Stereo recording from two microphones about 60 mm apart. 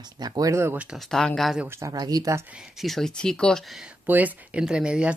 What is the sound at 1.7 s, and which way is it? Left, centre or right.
Speech, right.